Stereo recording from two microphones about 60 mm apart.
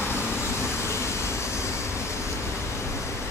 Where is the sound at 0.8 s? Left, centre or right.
Left.